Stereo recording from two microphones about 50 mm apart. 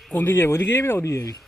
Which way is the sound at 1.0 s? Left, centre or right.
Left.